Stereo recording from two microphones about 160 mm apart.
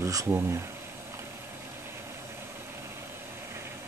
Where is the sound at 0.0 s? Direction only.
20° right (ahead or behind).